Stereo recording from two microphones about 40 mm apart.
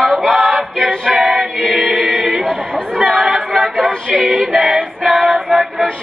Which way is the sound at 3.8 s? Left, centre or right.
Centre.